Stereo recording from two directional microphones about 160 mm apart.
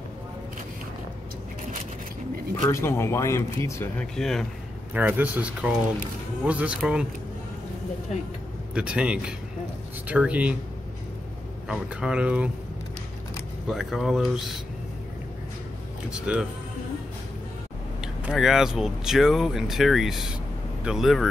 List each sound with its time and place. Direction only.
2.7 s speech: 15° left (ahead or behind)
4.0 s speech: 5° left (ahead or behind)
4.9 s speech: 10° right (ahead or behind)
8.7 s speech: 5° right (ahead or behind)
11.6 s speech: 5° right (ahead or behind)
13.7 s speech: centre (ahead or behind)
16.1 s speech: 5° right (ahead or behind)
18.0 s speech: 5° right (ahead or behind)